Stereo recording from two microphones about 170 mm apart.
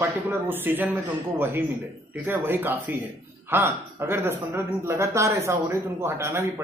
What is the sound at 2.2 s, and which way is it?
A woman's voice, 10° right (ahead or behind).